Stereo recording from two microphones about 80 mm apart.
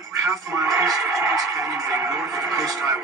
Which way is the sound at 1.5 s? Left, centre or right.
Right.